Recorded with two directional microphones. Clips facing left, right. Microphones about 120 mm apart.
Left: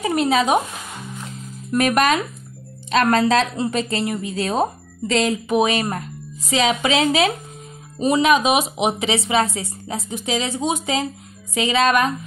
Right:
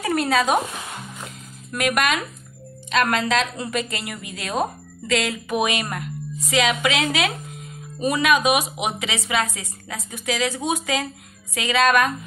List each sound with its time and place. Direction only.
0.0 s speech: 20° left (ahead or behind)
1.7 s a woman's voice: 30° left (ahead or behind)